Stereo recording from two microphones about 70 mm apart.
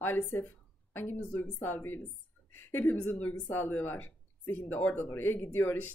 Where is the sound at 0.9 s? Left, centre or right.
Left.